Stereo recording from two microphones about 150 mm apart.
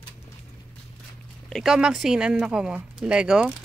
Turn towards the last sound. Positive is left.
turn(degrees=-5)  # may be behind; listen again after turning